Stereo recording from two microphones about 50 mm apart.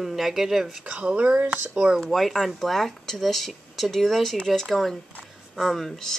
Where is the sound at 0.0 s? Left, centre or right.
Centre.